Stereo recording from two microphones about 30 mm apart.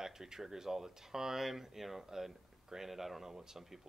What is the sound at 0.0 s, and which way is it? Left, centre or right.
Speech, centre.